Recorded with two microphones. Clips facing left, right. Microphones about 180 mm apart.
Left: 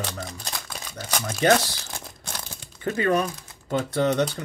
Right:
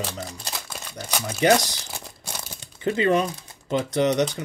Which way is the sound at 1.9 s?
10° right (ahead or behind).